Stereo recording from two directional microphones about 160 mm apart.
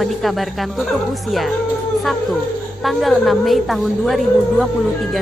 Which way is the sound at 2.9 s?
Centre (ahead or behind).